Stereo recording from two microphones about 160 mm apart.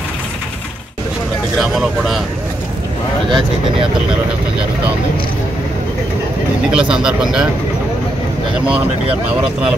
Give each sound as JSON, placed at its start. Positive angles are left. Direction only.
{"t": 1.6, "sound": "speech", "side_deg": 0}
{"t": 6.7, "sound": "speech", "side_deg": -5}
{"t": 9.3, "sound": "speech", "side_deg": -5}